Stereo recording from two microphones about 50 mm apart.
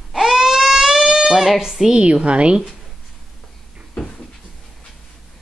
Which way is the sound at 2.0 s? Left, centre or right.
Right.